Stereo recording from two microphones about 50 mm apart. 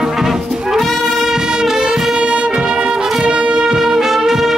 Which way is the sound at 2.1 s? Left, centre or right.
Centre.